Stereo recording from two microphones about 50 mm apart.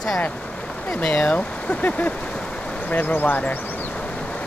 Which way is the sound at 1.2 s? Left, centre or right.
Left.